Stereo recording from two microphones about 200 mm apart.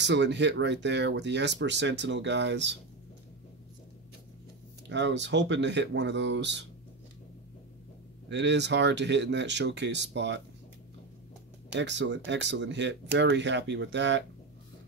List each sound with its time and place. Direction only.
0.0 s speech: 60° right (ahead or behind)
4.8 s speech: 65° right (ahead or behind)
8.3 s speech: 60° right (ahead or behind)
11.7 s speech: 60° right (ahead or behind)